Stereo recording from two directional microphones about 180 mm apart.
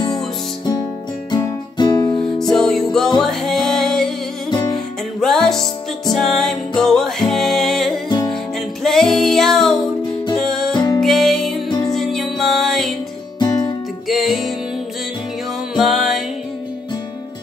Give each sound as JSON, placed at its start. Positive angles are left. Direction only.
{"t": 1.3, "sound": "music", "side_deg": 25}
{"t": 2.5, "sound": "music", "side_deg": 5}
{"t": 4.5, "sound": "music", "side_deg": 25}
{"t": 4.7, "sound": "music", "side_deg": 0}
{"t": 10.7, "sound": "music", "side_deg": 25}
{"t": 11.0, "sound": "music", "side_deg": 0}
{"t": 13.4, "sound": "music", "side_deg": 25}
{"t": 14.0, "sound": "music", "side_deg": 0}
{"t": 15.7, "sound": "music", "side_deg": 0}